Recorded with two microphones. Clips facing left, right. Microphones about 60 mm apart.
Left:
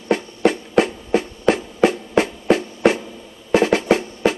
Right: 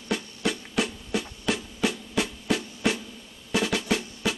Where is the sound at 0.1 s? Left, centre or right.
Left.